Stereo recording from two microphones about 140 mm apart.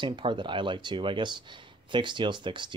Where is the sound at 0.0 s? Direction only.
35° right (ahead or behind).